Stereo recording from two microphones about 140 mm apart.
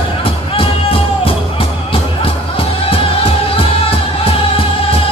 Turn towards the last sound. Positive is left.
turn(degrees=40)  # may be behind; listen again after turning